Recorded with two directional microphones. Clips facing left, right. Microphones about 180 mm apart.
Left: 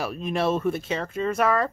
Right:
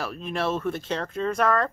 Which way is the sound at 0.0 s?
15° left (ahead or behind).